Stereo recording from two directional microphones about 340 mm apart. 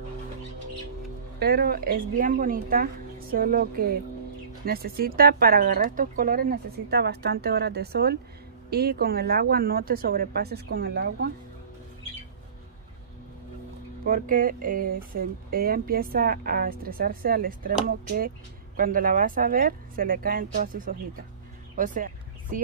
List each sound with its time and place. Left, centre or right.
1.4 s speech: right
14.0 s speech: right
21.7 s a sound: right